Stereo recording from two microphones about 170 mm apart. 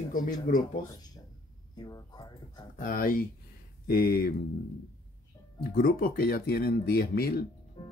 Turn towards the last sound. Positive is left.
turn(degrees=25)  # may be behind; listen again after turning